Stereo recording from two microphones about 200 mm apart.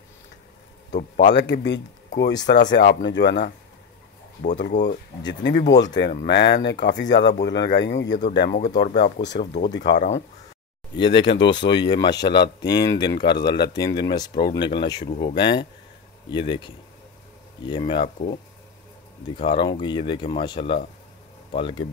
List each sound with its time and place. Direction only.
0.9 s speech: 60° left (ahead or behind)
4.6 s speech: 55° left (ahead or behind)
5.7 s speech: 20° left (ahead or behind)
5.9 s speech: 55° left (ahead or behind)
11.0 s speech: 25° left (ahead or behind)
19.2 s speech: 25° left (ahead or behind)